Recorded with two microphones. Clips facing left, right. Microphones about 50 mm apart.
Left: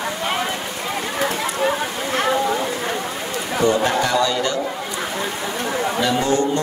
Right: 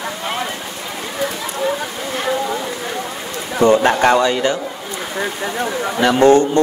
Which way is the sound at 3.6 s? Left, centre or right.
Right.